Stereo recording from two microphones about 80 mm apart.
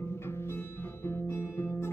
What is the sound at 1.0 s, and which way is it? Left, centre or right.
Guitar, left.